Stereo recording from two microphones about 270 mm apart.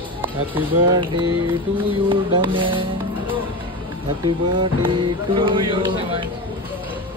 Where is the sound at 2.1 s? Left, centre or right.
Centre.